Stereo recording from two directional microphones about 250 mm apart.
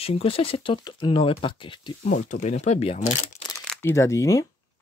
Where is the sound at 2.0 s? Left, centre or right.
Left.